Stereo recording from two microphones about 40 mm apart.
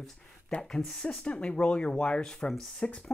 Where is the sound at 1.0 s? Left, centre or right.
Left; by 2.6 s centre.